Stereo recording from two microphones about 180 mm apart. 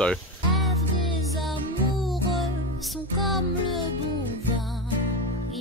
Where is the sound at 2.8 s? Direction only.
Centre (ahead or behind).